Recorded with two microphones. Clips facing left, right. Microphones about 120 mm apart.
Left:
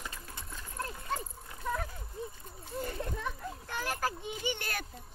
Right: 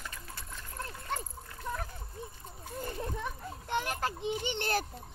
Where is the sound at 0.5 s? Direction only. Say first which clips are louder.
Left 3 dB; 5° left (ahead or behind).